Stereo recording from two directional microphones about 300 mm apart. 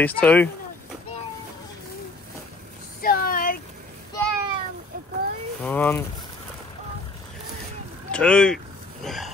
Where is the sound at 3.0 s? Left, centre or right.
Left.